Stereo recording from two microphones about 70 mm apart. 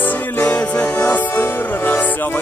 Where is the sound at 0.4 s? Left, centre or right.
Left.